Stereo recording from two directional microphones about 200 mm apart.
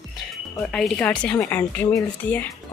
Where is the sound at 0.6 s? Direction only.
5° left (ahead or behind).